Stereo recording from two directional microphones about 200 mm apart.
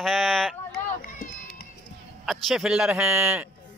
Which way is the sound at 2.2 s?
Centre (ahead or behind).